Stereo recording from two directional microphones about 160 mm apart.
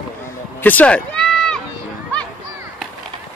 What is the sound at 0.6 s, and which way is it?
Run, 10° left (ahead or behind).